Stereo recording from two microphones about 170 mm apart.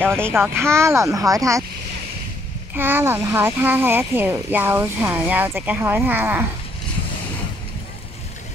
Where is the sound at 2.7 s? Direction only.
10° right (ahead or behind).